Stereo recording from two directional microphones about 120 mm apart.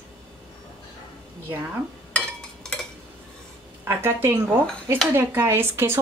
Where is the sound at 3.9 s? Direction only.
20° right (ahead or behind).